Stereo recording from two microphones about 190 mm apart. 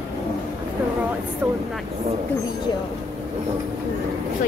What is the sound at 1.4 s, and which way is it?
Vehicle, 10° right (ahead or behind).